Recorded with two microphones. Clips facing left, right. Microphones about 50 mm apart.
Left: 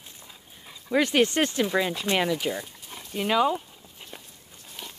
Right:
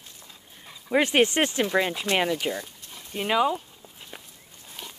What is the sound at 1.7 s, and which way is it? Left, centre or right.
Speech, centre.